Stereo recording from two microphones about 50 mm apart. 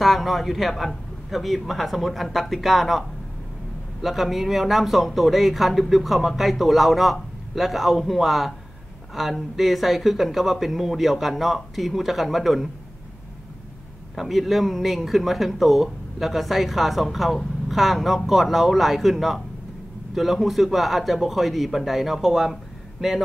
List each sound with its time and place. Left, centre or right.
0.0 s speech: centre
14.1 s speech: centre